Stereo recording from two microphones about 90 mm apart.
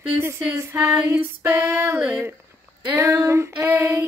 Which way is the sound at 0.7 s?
25° right (ahead or behind).